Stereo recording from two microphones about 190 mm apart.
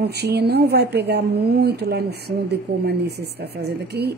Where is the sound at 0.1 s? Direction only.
60° right (ahead or behind).